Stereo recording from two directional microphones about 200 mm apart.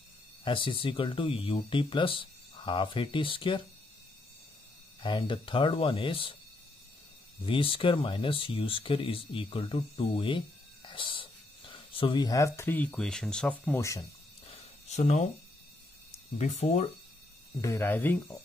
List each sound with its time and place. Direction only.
0.4 s speech: 25° left (ahead or behind)
5.0 s speech: 25° left (ahead or behind)
7.4 s speech: 25° left (ahead or behind)
14.5 s a sound: 30° left (ahead or behind)
16.3 s speech: 35° left (ahead or behind)
17.6 s speech: 15° left (ahead or behind)